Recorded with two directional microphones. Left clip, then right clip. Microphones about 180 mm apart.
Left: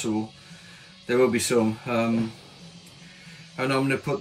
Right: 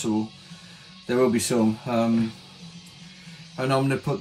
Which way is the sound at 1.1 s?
Centre (ahead or behind).